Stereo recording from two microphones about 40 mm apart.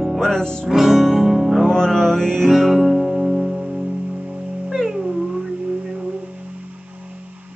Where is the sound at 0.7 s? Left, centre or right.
Centre.